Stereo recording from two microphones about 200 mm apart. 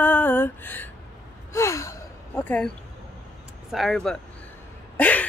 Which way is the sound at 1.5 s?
15° left (ahead or behind).